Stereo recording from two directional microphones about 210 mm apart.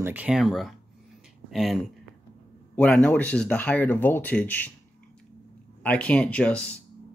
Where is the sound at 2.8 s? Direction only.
5° left (ahead or behind).